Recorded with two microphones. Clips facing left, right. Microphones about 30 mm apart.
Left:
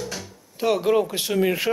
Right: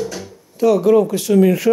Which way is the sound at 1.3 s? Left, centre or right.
Centre.